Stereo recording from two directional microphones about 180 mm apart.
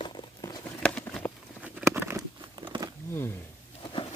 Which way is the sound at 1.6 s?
10° right (ahead or behind).